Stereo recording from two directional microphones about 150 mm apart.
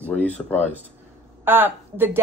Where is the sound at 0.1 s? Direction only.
10° left (ahead or behind).